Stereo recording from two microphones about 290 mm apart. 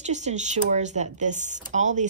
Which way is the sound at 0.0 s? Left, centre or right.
Right.